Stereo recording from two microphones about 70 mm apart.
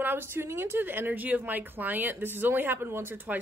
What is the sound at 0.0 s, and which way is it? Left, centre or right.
A woman's voice, right.